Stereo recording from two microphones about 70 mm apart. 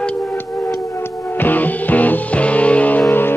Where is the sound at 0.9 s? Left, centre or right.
Left.